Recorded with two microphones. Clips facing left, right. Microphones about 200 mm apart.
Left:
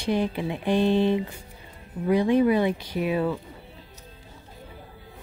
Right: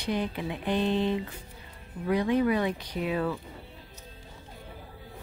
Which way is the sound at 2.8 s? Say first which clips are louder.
Left 4 dB; 10° left (ahead or behind).